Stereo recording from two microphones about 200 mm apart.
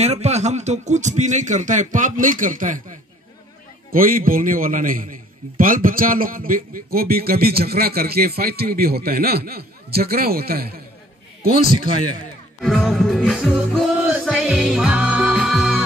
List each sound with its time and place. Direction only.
0.0 s a man's voice: 35° right (ahead or behind); by 11.9 s 50° right (ahead or behind)
12.6 s music: centre (ahead or behind)